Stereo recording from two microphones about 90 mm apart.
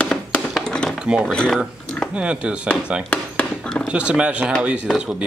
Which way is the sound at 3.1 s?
15° left (ahead or behind).